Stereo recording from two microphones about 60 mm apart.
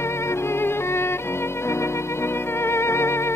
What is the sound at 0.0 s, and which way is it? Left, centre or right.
Music, left.